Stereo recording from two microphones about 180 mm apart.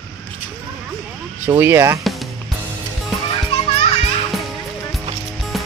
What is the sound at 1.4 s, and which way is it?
Speech, 15° right (ahead or behind).